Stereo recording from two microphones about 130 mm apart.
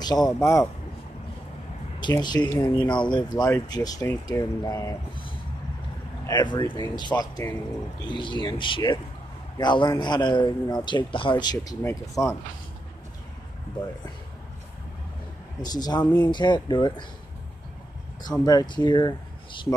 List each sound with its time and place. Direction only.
0.0 s speech: 30° left (ahead or behind)
2.0 s speech: 35° left (ahead or behind)
6.2 s speech: 35° left (ahead or behind)
15.6 s speech: 30° left (ahead or behind)
16.0 s speech: 15° left (ahead or behind)
16.3 s speech: 35° left (ahead or behind)
18.4 s speech: 30° left (ahead or behind)